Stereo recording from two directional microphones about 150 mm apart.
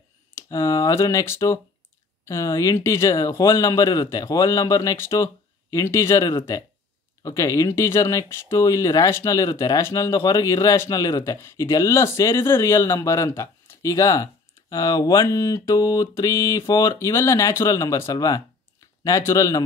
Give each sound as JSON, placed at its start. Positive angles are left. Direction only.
{"t": 0.5, "sound": "speech", "side_deg": 20}